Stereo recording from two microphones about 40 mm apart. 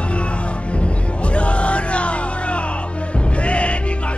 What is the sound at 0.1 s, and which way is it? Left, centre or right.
Music, left.